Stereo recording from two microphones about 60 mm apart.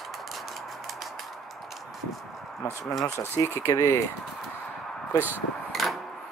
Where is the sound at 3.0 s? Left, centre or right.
Left.